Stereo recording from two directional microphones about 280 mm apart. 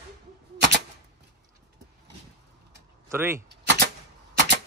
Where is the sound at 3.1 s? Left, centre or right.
Centre.